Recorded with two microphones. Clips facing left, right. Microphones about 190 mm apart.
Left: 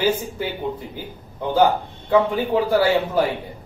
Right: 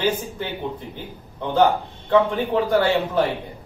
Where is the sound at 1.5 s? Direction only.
10° left (ahead or behind).